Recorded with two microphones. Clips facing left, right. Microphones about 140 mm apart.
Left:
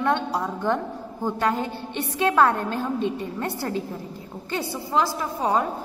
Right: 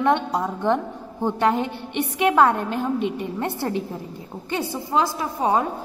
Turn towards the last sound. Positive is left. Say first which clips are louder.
# right 2 dB
turn(degrees=-15)  # may be behind; listen again after turning